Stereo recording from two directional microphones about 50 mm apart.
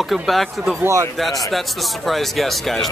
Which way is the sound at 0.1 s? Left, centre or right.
Centre.